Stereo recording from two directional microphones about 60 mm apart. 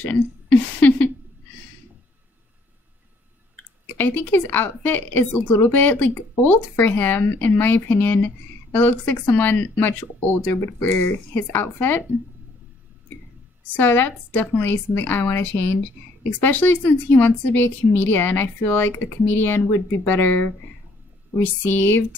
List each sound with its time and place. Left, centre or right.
0.5 s a sound: left
4.0 s a woman's voice: left
13.7 s a woman's voice: left